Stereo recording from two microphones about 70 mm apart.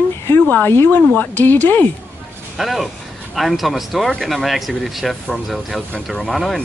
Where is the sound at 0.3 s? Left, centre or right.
Left.